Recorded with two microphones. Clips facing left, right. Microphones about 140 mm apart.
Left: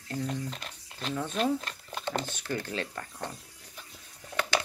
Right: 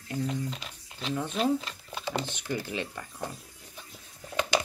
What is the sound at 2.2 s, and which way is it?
Speech, 15° right (ahead or behind).